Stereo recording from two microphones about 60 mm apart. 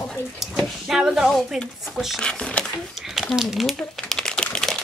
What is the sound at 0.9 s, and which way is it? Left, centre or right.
Speech, centre.